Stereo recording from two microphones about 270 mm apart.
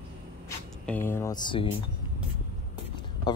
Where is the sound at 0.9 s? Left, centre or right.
Centre.